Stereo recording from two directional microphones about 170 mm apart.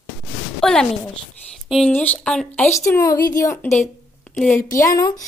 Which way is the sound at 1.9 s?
5° left (ahead or behind).